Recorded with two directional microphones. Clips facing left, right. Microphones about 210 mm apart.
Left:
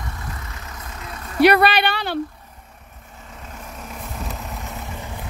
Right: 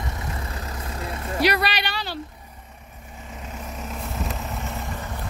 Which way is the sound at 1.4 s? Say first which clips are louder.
Left 9 dB; 55° left (ahead or behind).